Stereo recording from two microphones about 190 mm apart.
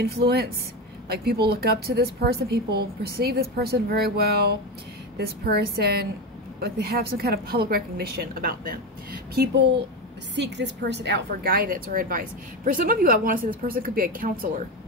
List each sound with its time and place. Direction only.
0.0 s a woman's voice: 55° right (ahead or behind)
10.3 s a woman's voice: 65° right (ahead or behind); by 14.6 s 50° right (ahead or behind)